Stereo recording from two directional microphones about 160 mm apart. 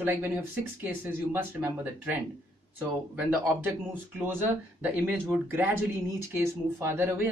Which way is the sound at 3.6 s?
10° right (ahead or behind).